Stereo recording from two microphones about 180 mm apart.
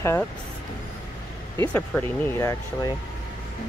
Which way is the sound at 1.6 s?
10° left (ahead or behind).